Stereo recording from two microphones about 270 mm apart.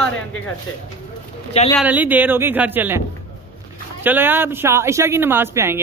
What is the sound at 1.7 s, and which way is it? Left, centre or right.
Speech, centre.